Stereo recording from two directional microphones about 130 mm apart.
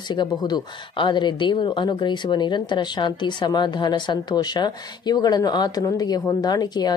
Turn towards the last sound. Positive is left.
turn(degrees=30)  # may be behind; listen again after turning